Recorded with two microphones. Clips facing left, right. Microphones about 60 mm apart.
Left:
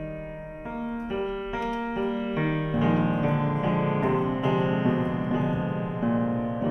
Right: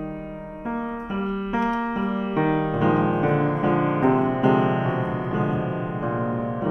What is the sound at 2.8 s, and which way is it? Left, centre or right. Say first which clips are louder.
Music: right 4 dB; right.